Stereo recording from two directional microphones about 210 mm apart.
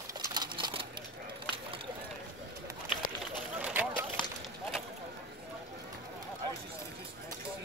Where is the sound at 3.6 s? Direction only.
5° right (ahead or behind).